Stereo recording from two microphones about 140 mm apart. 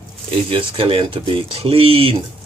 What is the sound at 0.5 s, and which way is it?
Speech, 40° right (ahead or behind).